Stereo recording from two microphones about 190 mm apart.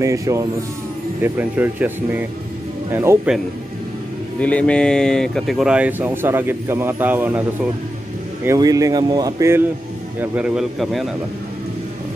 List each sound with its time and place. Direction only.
0.0 s speech: 15° right (ahead or behind)
4.4 s speech: 5° left (ahead or behind); by 7.4 s 10° right (ahead or behind)
8.5 s a man's voice: 20° right (ahead or behind); by 11.1 s centre (ahead or behind)